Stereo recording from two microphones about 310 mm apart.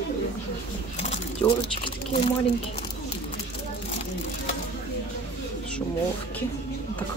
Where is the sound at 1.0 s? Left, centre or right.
Left.